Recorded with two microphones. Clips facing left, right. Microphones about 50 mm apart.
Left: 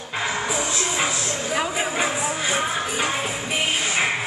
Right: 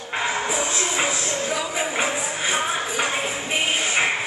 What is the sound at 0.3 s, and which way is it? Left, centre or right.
Music, right.